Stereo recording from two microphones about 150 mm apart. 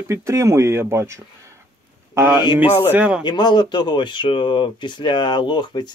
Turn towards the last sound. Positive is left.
turn(degrees=30)  # may be behind; listen again after turning